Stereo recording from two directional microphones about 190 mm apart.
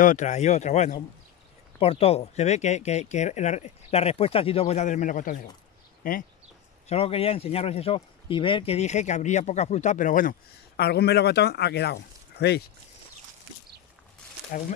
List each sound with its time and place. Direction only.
0.0 s speech: 40° left (ahead or behind)
6.9 s speech: 30° left (ahead or behind)
10.8 s speech: 60° left (ahead or behind)